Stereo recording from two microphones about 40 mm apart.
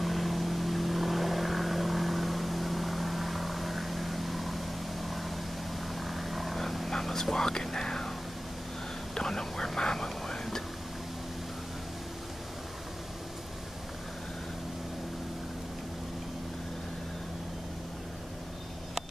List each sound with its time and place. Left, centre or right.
0.0 s vehicle: centre
5.9 s whispering: centre
9.1 s whispering: centre